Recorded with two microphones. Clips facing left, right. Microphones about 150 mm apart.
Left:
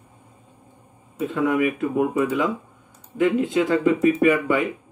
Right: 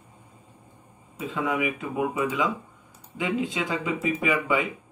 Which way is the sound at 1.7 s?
55° left (ahead or behind).